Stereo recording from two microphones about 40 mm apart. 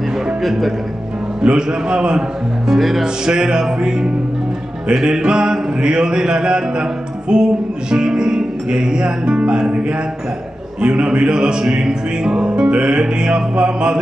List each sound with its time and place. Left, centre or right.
0.4 s speech: centre
1.4 s music: right
2.7 s speech: centre
3.3 s music: centre